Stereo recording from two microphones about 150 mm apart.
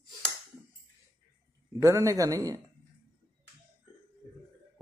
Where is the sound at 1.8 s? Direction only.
20° right (ahead or behind).